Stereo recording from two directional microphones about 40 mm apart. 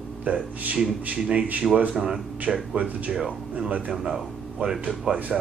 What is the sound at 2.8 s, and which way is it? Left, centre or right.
Speech, right.